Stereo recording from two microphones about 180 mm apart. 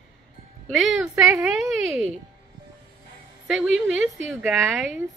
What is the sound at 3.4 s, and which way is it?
A woman's voice, 5° right (ahead or behind).